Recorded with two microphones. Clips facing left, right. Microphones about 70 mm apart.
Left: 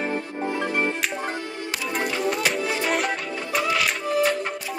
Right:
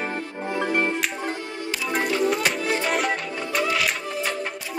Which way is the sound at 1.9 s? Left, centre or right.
Centre.